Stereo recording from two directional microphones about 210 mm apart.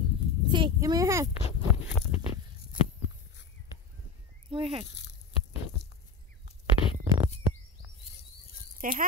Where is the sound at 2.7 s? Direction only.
40° left (ahead or behind).